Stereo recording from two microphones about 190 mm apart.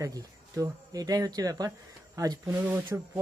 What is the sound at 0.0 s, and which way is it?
Speech, 20° right (ahead or behind).